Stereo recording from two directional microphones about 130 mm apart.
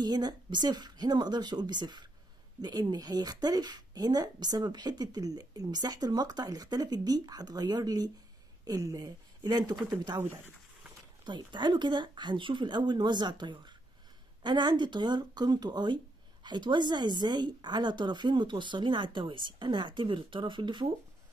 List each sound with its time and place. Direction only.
0.0 s a woman's voice: 30° right (ahead or behind)
10.1 s speech: 20° right (ahead or behind)
11.2 s a woman's voice: 35° right (ahead or behind)